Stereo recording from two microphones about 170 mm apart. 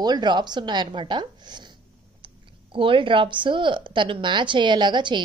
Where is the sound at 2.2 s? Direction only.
30° right (ahead or behind).